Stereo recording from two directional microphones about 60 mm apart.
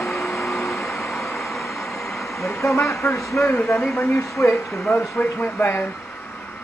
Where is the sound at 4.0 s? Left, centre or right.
Left.